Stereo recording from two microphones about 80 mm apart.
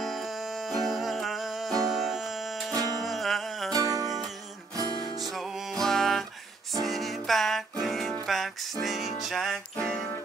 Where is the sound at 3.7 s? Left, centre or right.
Right.